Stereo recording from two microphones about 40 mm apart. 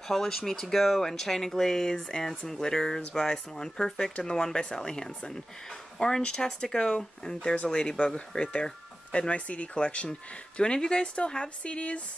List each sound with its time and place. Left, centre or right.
0.1 s speech: centre; by 9.3 s left
9.3 s speech: left